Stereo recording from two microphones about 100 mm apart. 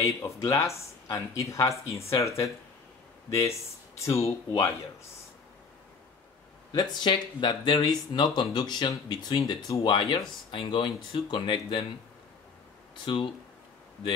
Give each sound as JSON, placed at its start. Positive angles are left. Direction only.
{"t": 0.0, "sound": "speech", "side_deg": 30}
{"t": 6.7, "sound": "speech", "side_deg": 45}
{"t": 10.5, "sound": "speech", "side_deg": 55}
{"t": 13.0, "sound": "speech", "side_deg": 55}